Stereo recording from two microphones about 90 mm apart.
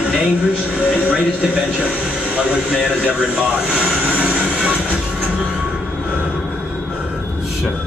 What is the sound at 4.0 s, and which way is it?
Train, 10° right (ahead or behind).